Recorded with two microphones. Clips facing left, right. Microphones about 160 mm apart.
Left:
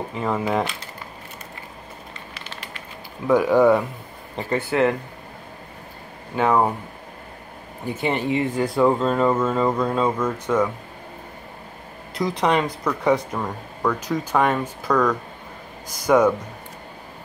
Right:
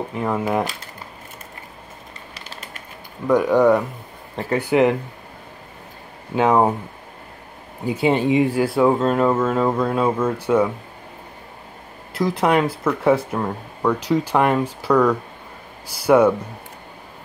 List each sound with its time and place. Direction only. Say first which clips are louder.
0.1 s speech: right 1 dB; 10° right (ahead or behind)
2.3 s a sound: right 1 dB; 35° right (ahead or behind)
3.3 s speech: right 1 dB; centre (ahead or behind)
4.5 s speech: right 3 dB; 15° right (ahead or behind)
6.3 s speech: right 3 dB; 15° right (ahead or behind)
7.8 s speech: right 5 dB; 10° right (ahead or behind)
12.1 s speech: right 2 dB; centre (ahead or behind)